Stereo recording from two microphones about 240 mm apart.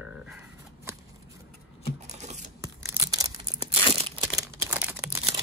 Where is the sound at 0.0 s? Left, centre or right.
Centre.